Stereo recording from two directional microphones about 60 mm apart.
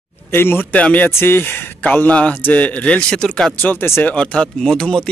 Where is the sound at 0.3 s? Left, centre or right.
Left.